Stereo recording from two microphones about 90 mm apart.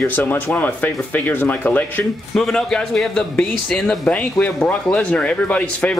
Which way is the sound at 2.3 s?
5° left (ahead or behind).